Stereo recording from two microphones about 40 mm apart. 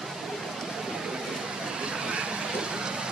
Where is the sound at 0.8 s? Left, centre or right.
Centre.